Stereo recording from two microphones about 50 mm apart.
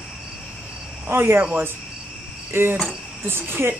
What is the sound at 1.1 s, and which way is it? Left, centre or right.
Speech, right.